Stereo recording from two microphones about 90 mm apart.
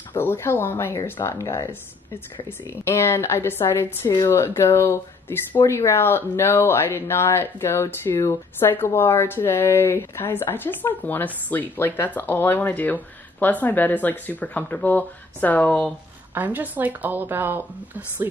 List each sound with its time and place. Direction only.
0.1 s speech: 25° left (ahead or behind)
16.3 s speech: 20° right (ahead or behind)